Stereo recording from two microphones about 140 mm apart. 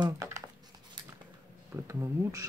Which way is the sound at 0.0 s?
25° right (ahead or behind).